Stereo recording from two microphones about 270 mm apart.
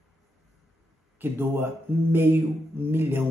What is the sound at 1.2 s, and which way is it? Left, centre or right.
Speech, centre.